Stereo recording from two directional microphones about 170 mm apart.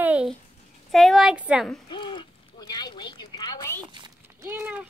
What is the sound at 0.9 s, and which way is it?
Speech, centre (ahead or behind).